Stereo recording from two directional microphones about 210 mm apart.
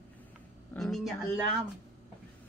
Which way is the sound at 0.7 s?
Centre (ahead or behind).